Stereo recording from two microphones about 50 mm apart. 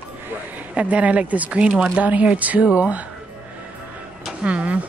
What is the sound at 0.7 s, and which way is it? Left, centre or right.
A woman's voice, right.